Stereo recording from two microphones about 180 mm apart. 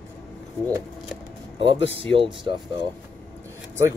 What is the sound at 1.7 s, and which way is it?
Speech, 90° left.